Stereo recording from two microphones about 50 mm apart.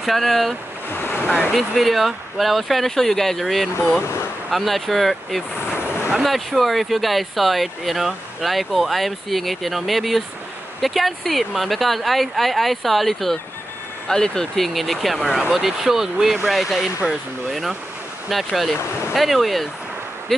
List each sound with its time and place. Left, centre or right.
0.0 s speech: centre
0.8 s waves: left
1.5 s speech: centre